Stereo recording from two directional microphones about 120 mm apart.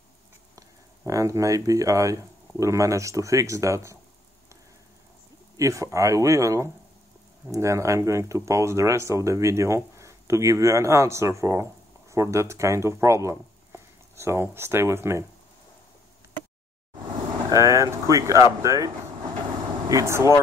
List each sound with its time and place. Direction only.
0.6 s speech: 25° right (ahead or behind)
5.6 s speech: 25° right (ahead or behind)
17.5 s speech: 25° right (ahead or behind)
19.9 s speech: 25° right (ahead or behind)